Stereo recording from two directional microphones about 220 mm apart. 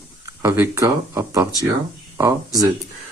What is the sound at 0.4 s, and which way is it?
Speech, 10° right (ahead or behind).